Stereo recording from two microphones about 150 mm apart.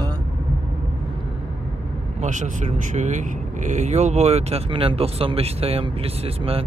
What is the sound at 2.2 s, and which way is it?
Speech, 55° right (ahead or behind).